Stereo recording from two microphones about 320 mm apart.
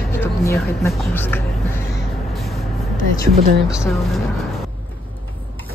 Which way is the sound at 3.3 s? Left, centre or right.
Right.